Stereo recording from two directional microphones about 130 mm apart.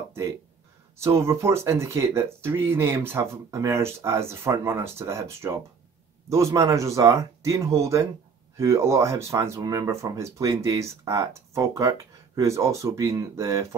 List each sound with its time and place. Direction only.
0.9 s speech: 20° right (ahead or behind)